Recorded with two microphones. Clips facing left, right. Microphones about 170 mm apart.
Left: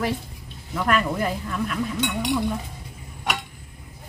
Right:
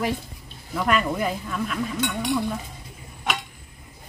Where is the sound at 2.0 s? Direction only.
15° left (ahead or behind).